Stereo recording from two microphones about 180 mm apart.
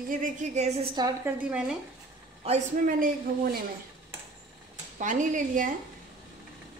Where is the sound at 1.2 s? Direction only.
5° right (ahead or behind).